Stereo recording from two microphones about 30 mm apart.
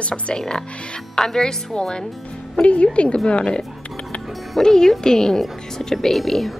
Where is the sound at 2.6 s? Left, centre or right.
Left.